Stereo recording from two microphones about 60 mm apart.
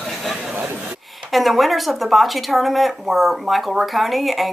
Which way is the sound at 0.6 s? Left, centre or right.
Right.